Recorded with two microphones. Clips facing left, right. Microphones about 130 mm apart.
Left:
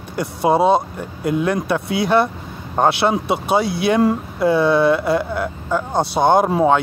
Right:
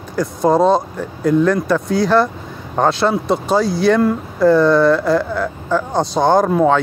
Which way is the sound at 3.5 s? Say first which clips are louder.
Right 1 dB; 60° left (ahead or behind).